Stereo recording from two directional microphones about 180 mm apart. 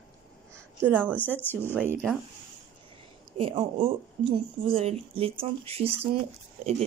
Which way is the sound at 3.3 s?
30° right (ahead or behind).